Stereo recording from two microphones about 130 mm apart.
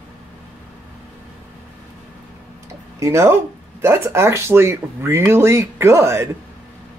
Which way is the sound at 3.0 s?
20° right (ahead or behind).